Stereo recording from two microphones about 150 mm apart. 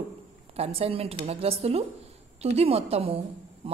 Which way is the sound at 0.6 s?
40° right (ahead or behind).